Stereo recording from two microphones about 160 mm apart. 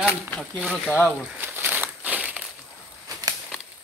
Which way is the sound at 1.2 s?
10° right (ahead or behind).